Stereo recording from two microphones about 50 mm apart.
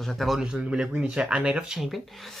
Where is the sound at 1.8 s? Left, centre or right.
Centre.